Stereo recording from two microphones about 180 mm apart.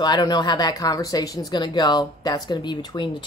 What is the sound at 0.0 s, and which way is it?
Speech, 25° left (ahead or behind).